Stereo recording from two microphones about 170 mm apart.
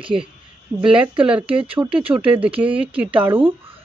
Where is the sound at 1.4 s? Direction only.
30° right (ahead or behind).